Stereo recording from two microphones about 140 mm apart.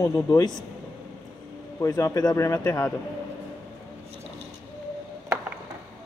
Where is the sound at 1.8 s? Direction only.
25° left (ahead or behind).